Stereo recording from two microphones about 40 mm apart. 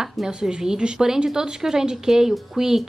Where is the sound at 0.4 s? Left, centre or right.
Centre.